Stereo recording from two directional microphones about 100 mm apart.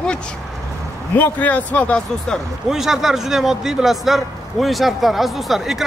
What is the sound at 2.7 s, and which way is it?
Speech, 5° right (ahead or behind).